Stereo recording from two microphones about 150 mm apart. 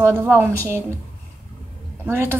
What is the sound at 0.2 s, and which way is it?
Speech, 15° right (ahead or behind).